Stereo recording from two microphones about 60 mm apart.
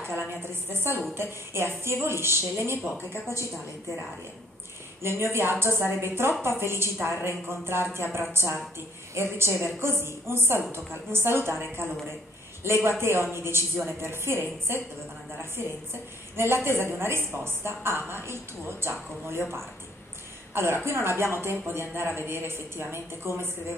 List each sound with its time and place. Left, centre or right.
0.0 s a woman's voice: right
5.0 s a woman's voice: right
20.8 s a woman's voice: right